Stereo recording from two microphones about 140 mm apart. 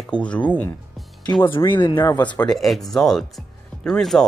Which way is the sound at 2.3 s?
5° left (ahead or behind).